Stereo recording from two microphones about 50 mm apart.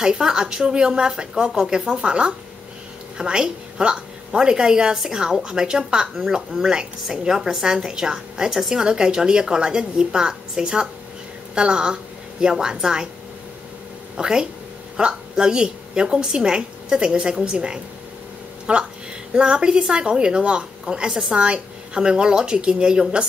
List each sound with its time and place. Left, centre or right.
0.0 s a woman's voice: centre
14.1 s a woman's voice: centre